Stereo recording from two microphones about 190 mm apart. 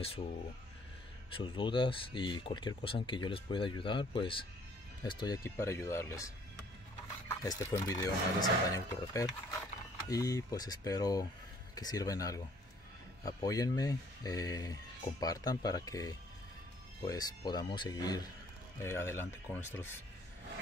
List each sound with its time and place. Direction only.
1.3 s speech: 25° left (ahead or behind)